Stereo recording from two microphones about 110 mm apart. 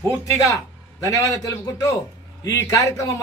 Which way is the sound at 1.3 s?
30° left (ahead or behind).